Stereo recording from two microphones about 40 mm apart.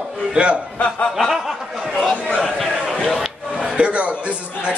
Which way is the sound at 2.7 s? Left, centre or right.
Centre.